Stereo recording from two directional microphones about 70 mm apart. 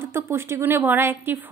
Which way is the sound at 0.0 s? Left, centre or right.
Right.